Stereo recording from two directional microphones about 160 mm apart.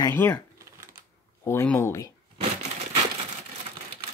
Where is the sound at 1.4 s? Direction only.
15° left (ahead or behind).